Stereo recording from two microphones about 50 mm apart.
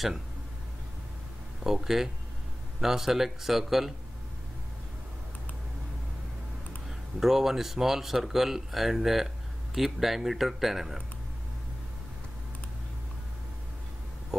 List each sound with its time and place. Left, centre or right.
1.6 s speech: centre
7.2 s speech: centre